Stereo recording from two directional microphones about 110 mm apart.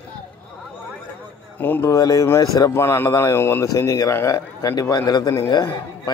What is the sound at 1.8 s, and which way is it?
A man's voice, 35° left (ahead or behind).